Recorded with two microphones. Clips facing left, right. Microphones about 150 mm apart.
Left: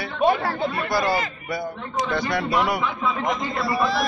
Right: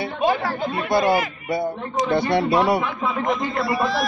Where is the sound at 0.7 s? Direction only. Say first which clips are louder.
Right 5 dB; 20° right (ahead or behind).